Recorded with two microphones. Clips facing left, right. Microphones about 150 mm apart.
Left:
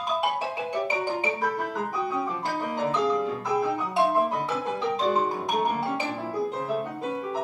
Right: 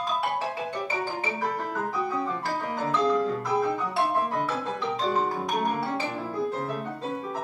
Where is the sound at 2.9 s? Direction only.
10° left (ahead or behind).